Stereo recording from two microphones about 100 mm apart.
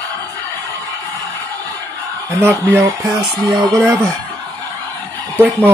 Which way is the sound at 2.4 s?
25° right (ahead or behind).